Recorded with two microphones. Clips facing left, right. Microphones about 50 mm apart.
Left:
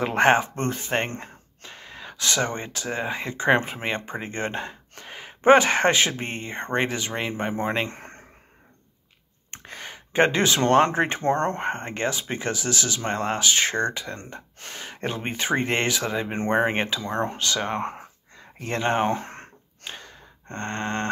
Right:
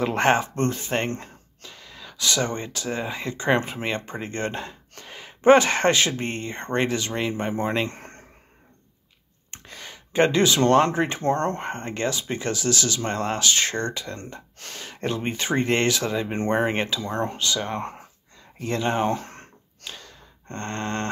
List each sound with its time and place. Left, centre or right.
0.0 s speech: left
1.6 s speech: left; by 8.2 s centre
9.5 s speech: left
17.4 s speech: left
18.6 s gasp: left; by 21.1 s centre